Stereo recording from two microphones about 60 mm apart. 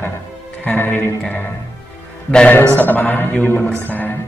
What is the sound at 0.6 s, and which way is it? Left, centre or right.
Speech, left.